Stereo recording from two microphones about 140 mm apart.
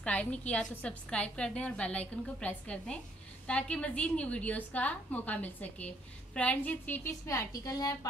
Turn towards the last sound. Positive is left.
turn(degrees=25)  # may be behind; listen again after turning